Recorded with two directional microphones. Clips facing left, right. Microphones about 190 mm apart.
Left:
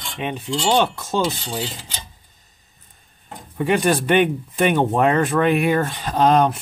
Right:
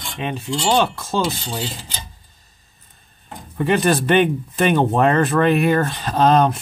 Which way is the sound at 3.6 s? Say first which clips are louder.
Right 1 dB; 10° left (ahead or behind).